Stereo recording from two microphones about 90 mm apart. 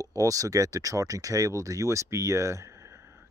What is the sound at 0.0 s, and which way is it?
Speech, 40° right (ahead or behind).